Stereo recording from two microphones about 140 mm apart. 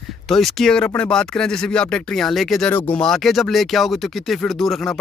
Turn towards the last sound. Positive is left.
turn(degrees=0)  # may be behind; listen again after turning